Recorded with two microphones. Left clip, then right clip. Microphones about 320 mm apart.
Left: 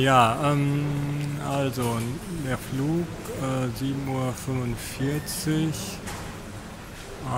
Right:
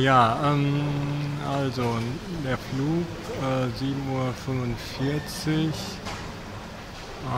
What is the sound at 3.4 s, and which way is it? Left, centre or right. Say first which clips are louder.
Speech: right 2 dB; centre.